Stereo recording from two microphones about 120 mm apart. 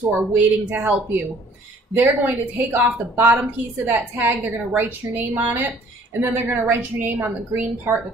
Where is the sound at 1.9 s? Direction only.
15° right (ahead or behind).